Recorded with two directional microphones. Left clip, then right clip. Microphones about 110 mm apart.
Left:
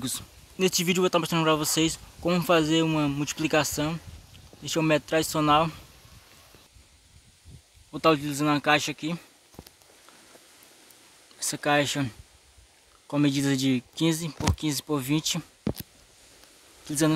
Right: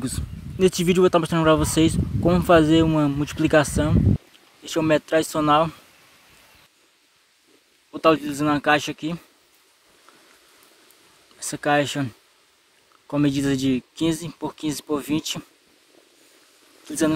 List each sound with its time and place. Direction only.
0.0 s speech: 20° right (ahead or behind)
2.9 s speech: 10° right (ahead or behind)
7.9 s speech: 20° right (ahead or behind)
11.3 s speech: 15° right (ahead or behind)
13.1 s speech: 15° right (ahead or behind)
16.8 s speech: 20° right (ahead or behind)